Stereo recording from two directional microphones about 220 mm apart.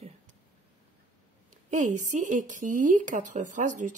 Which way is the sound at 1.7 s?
35° right (ahead or behind).